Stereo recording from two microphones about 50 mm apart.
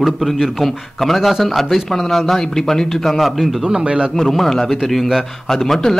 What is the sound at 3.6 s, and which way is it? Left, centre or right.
Speech, centre.